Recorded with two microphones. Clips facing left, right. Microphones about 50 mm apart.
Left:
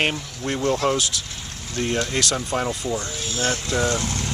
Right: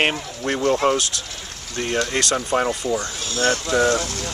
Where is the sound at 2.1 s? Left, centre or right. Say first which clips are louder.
Right 3 dB; centre.